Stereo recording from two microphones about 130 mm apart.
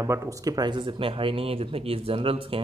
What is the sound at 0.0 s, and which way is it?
Speech, 25° right (ahead or behind).